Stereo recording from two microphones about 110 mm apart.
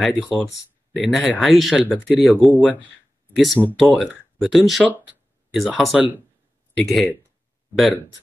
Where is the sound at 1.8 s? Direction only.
15° right (ahead or behind).